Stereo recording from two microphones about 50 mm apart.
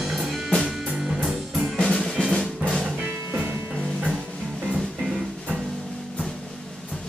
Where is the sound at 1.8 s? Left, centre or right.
Centre.